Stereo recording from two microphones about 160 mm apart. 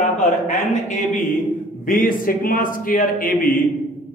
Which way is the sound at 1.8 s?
60° left (ahead or behind).